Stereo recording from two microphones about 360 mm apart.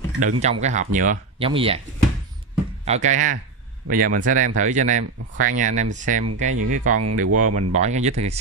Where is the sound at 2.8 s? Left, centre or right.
Centre.